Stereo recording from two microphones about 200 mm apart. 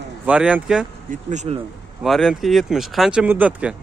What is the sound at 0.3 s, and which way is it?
Speech, 5° right (ahead or behind).